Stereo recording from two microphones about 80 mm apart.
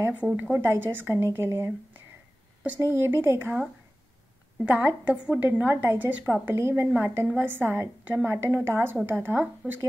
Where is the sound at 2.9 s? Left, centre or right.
Right.